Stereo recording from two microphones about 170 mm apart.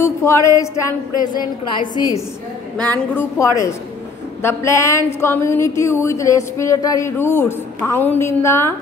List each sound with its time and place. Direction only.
0.0 s a woman's voice: 15° left (ahead or behind)
2.8 s a woman's voice: 10° left (ahead or behind)